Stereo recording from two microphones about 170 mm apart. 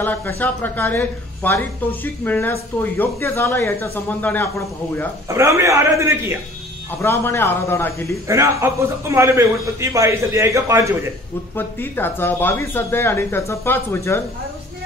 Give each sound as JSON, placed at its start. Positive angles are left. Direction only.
{"t": 0.0, "sound": "speech", "side_deg": 10}
{"t": 5.3, "sound": "a man's voice", "side_deg": -15}
{"t": 7.0, "sound": "speech", "side_deg": 15}
{"t": 8.3, "sound": "a man's voice", "side_deg": -15}
{"t": 11.5, "sound": "speech", "side_deg": 10}